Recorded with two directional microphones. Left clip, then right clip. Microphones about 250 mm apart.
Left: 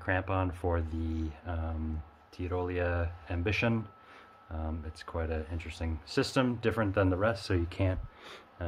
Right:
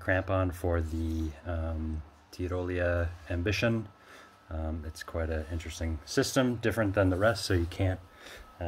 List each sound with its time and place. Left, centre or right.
0.0 s speech: centre